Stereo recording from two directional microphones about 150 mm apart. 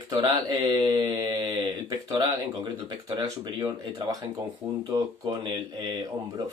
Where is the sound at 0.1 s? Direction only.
25° right (ahead or behind).